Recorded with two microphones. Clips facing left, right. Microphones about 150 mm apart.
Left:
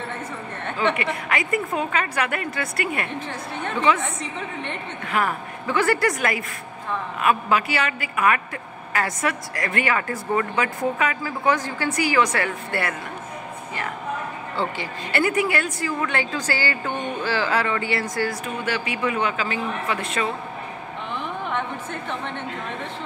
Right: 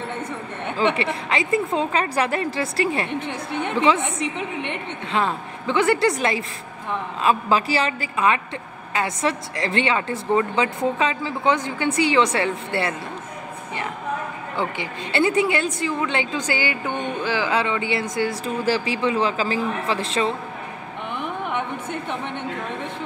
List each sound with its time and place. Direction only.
0.9 s a woman's voice: 25° right (ahead or behind)
14.6 s a woman's voice: 20° right (ahead or behind)
18.4 s speech: 35° right (ahead or behind)